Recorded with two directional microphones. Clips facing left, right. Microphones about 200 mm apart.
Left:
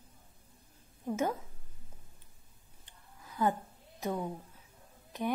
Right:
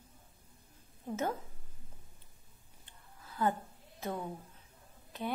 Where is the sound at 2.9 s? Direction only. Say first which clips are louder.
Left 1 dB; 15° left (ahead or behind).